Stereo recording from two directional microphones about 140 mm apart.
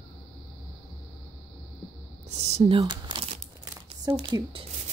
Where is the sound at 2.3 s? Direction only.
50° right (ahead or behind).